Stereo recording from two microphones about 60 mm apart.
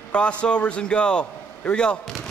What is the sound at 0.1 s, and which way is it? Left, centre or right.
A man's voice, centre.